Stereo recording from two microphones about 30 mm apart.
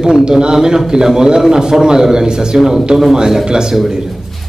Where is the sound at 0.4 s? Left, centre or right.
Right.